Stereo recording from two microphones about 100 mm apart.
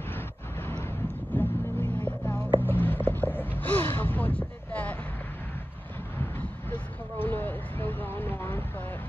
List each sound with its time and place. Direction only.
0.1 s vehicle: 20° left (ahead or behind)
1.3 s music: 20° left (ahead or behind)
2.6 s a sound: 20° left (ahead or behind)
6.3 s vehicle: 20° left (ahead or behind)